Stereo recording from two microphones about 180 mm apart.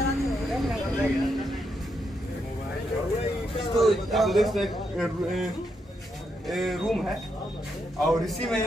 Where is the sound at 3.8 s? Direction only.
Centre (ahead or behind).